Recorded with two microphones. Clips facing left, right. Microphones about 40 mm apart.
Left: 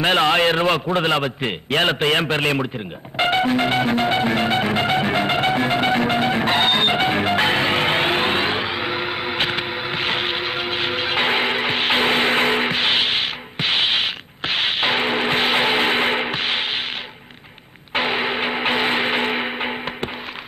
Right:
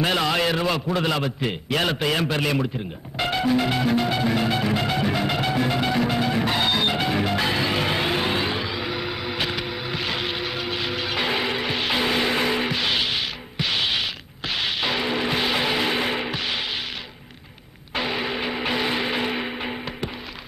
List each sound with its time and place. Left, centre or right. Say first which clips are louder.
0.0 s a man's voice: left 5 dB; left
3.2 s music: left 4 dB; left
17.9 s a sound: left 5 dB; left